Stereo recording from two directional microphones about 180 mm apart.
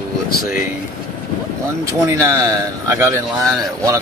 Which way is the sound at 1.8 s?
15° right (ahead or behind).